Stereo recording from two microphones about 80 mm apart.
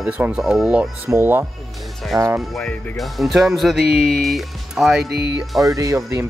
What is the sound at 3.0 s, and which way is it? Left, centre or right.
Speech, centre.